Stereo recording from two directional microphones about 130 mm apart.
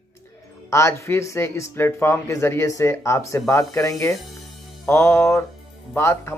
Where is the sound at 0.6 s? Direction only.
20° left (ahead or behind).